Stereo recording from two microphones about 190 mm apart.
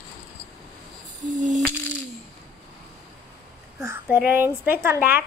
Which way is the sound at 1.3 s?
40° right (ahead or behind).